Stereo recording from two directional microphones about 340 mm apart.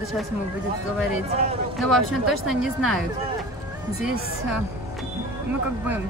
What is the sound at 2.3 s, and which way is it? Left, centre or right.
Speech, centre.